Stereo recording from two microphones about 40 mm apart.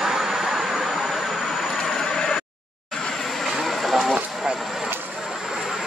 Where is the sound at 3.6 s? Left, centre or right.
Centre.